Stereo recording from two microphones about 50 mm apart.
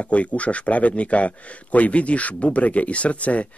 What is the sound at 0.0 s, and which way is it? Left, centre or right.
Speech, left.